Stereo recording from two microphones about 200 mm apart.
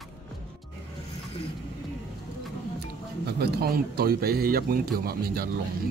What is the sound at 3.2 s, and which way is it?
Speech, 55° right (ahead or behind).